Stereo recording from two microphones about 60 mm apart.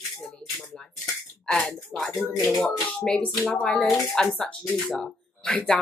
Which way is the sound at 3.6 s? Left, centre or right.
Centre.